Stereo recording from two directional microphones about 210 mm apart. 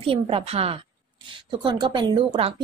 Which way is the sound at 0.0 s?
25° right (ahead or behind).